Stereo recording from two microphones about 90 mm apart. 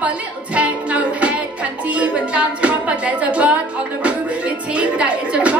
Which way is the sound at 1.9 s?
15° right (ahead or behind).